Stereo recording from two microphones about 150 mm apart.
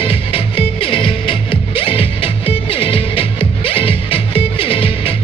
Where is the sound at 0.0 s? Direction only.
40° left (ahead or behind).